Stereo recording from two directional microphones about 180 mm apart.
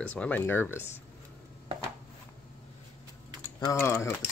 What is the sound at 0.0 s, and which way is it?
Speech, 10° left (ahead or behind).